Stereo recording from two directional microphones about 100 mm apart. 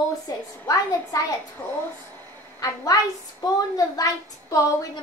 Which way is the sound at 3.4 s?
35° left (ahead or behind).